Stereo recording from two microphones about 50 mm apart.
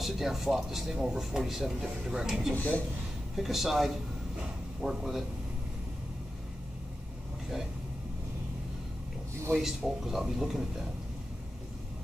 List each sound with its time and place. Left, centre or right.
0.0 s speech: centre
2.5 s speech: left
3.3 s speech: centre
9.6 s speech: centre